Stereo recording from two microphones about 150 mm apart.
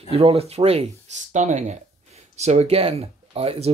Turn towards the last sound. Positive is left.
turn(degrees=-40)  # may be behind; listen again after turning